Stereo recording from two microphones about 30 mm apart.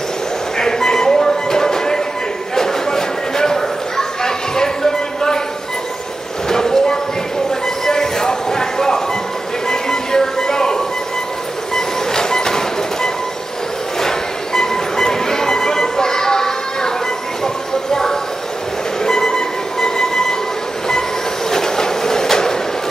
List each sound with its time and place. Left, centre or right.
0.6 s music: centre
2.5 s a sound: centre
6.5 s a sound: centre
9.7 s music: centre
11.7 s train: centre
13.9 s music: centre
19.0 s music: left
21.5 s train: centre